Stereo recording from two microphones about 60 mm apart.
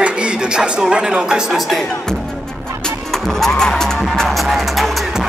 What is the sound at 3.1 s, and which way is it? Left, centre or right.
Music, centre.